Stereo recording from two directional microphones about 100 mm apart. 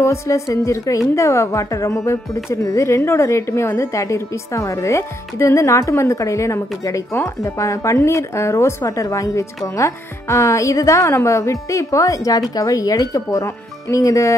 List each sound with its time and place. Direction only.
0.0 s a woman's voice: 30° left (ahead or behind)